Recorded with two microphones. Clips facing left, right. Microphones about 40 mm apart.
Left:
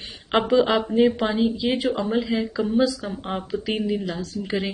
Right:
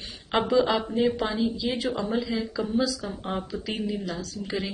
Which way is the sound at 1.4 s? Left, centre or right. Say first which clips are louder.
Left 5 dB; left.